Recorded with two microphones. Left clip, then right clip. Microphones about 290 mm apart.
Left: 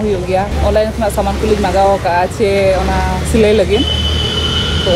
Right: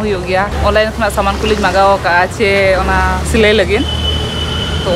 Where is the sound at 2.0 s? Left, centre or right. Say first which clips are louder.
Right 2 dB; centre.